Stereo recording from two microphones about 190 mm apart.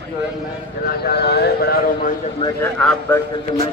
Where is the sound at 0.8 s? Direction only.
55° left (ahead or behind).